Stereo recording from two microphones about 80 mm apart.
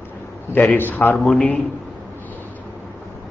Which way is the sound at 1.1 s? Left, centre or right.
Centre.